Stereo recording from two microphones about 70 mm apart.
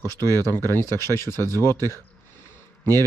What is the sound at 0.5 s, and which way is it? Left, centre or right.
Speech, left.